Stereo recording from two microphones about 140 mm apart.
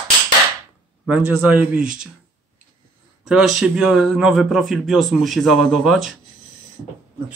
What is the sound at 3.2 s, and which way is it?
A man's voice, 5° right (ahead or behind).